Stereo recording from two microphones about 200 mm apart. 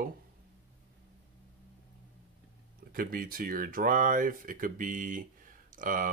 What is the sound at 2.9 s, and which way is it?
Speech, 45° right (ahead or behind).